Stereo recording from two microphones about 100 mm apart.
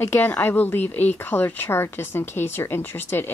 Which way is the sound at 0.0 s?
20° left (ahead or behind).